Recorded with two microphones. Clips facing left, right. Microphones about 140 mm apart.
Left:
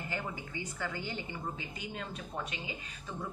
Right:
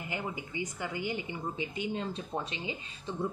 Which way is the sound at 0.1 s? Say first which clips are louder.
Right 4 dB; 15° right (ahead or behind).